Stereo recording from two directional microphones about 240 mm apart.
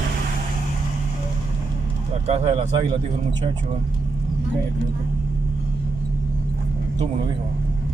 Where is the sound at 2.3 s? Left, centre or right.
Right.